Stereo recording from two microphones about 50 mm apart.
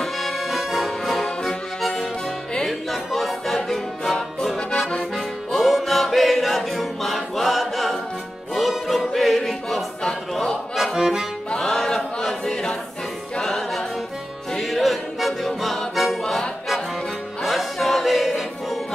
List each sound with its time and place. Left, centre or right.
0.0 s music: centre
4.6 s accordion: centre
5.1 s music: centre
10.3 s a sound: centre
11.0 s accordion: centre
11.5 s choir: centre
13.4 s music: centre